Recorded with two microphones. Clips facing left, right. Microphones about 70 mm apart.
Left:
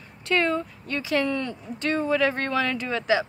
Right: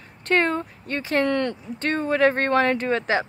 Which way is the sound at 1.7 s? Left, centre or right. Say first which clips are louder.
Even; right.